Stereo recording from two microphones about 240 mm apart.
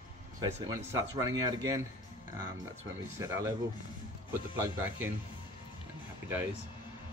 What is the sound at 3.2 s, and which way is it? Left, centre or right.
Speech, centre.